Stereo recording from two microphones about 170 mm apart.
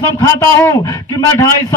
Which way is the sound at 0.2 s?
20° left (ahead or behind).